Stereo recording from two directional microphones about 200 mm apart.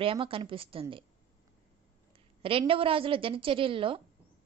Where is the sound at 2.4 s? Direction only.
25° right (ahead or behind).